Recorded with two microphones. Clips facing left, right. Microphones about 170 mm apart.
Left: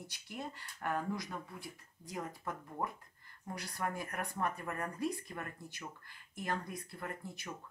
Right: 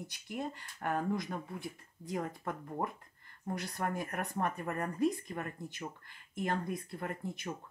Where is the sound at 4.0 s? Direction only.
25° right (ahead or behind).